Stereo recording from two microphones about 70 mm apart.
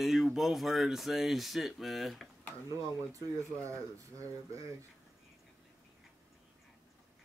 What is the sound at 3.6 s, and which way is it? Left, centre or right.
Speech, right.